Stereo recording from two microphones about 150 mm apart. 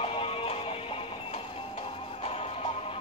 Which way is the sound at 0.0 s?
40° left (ahead or behind).